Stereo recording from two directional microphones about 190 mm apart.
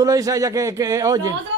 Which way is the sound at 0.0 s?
15° right (ahead or behind).